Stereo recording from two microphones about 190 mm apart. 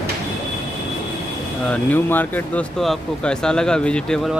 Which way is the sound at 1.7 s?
10° left (ahead or behind).